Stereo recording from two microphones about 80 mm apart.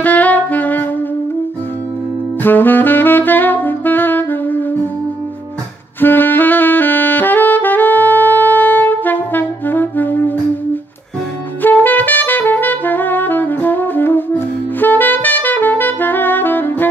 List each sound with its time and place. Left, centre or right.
0.0 s saxophone: left
2.4 s saxophone: left
5.9 s saxophone: left
11.6 s saxophone: left